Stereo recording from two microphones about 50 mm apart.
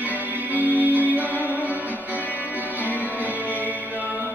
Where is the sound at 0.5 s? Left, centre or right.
Right.